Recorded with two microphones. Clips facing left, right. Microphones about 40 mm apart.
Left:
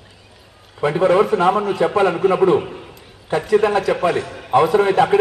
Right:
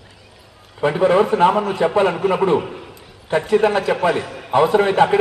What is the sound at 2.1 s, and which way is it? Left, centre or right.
Speech, centre.